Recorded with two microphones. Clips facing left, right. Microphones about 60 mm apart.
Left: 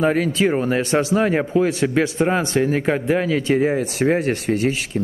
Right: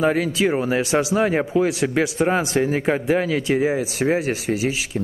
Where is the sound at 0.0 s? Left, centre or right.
Centre.